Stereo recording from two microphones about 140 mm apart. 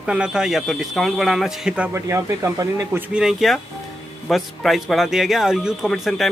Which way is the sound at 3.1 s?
5° right (ahead or behind).